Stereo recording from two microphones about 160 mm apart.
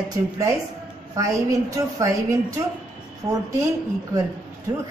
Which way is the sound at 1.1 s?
20° right (ahead or behind).